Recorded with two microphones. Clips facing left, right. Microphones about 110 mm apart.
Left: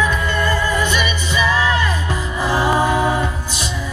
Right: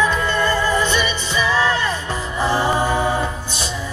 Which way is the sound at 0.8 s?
30° right (ahead or behind).